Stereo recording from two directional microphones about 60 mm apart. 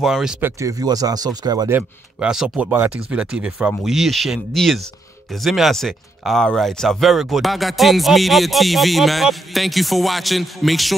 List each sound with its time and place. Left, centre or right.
0.0 s speech: centre
0.6 s speech: right
2.1 s speech: centre
3.8 s speech: centre